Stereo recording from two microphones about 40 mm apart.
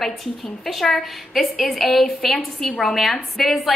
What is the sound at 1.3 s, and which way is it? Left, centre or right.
A woman's voice, centre.